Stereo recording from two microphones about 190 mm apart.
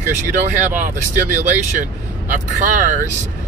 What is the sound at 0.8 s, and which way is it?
Speech, 40° right (ahead or behind).